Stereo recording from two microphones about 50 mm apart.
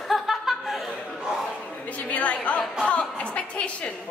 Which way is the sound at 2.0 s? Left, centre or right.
Left.